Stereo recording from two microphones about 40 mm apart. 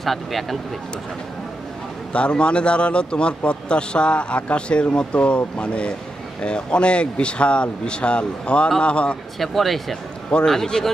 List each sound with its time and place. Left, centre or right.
0.0 s speech: centre
2.1 s a man's voice: left
9.4 s speech: centre